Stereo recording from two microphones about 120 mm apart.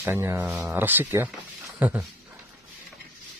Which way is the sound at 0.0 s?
20° right (ahead or behind).